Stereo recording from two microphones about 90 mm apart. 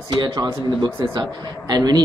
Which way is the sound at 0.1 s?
50° right (ahead or behind).